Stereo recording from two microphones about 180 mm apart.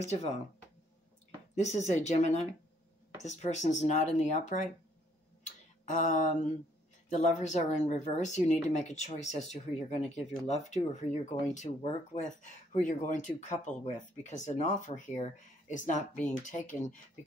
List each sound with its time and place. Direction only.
1.5 s speech: 40° left (ahead or behind)